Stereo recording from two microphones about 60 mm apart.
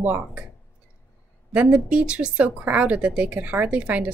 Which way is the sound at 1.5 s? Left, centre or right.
Right.